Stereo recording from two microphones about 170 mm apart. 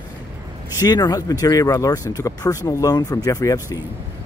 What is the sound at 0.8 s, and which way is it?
Speech, 25° left (ahead or behind).